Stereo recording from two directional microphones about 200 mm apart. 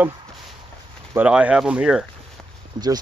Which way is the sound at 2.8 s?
20° right (ahead or behind).